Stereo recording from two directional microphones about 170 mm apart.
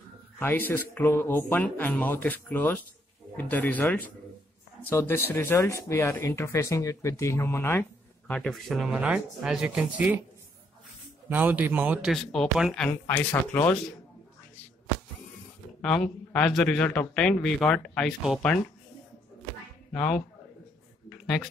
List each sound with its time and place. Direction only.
0.4 s speech: 10° left (ahead or behind)
8.3 s a man's voice: 5° left (ahead or behind)
11.2 s a man's voice: 10° right (ahead or behind)
12.1 s a man's voice: centre (ahead or behind)
12.8 s speech: 10° left (ahead or behind)
15.8 s a man's voice: 5° left (ahead or behind)
19.9 s a man's voice: 5° left (ahead or behind)